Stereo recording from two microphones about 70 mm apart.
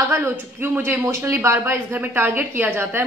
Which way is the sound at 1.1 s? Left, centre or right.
Right.